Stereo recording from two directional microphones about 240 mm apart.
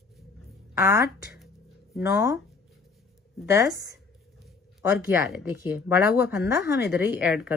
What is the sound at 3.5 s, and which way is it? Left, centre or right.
Speech, left.